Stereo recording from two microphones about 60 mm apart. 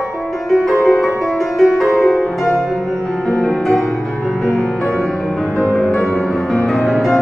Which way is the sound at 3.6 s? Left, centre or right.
Centre.